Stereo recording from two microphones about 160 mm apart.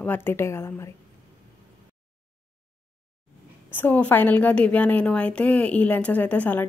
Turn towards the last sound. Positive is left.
turn(degrees=10)  # may be behind; listen again after turning